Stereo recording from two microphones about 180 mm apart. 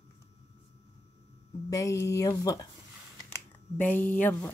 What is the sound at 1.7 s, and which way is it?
Speech, 20° left (ahead or behind).